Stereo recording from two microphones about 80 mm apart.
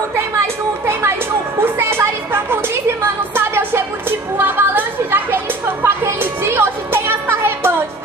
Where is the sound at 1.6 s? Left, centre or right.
Right.